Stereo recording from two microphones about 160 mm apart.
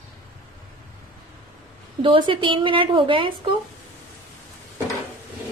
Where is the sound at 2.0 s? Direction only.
30° right (ahead or behind).